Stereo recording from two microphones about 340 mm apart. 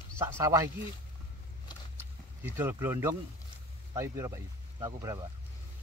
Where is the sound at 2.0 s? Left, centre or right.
Centre.